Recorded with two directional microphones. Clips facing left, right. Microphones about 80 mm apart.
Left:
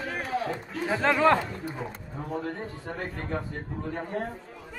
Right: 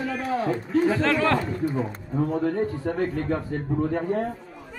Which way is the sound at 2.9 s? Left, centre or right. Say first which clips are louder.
Right 5 dB; right.